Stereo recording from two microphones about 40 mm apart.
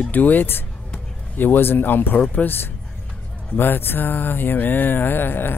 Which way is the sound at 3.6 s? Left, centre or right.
Left.